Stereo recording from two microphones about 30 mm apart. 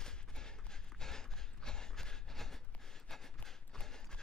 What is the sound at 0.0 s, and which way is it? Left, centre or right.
Clip-clop, left.